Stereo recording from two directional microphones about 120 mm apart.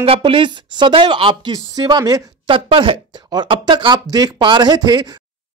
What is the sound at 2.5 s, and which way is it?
Speech, 45° right (ahead or behind).